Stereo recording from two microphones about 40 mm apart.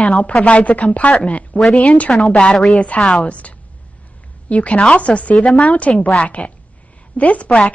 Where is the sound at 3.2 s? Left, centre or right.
Left.